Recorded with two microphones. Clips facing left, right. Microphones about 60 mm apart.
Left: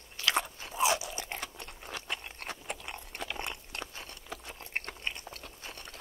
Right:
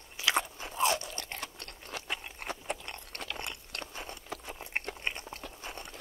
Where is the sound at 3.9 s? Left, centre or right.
Right.